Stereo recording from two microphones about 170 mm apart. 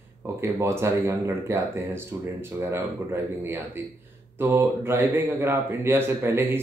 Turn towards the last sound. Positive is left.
turn(degrees=-15)  # may be behind; listen again after turning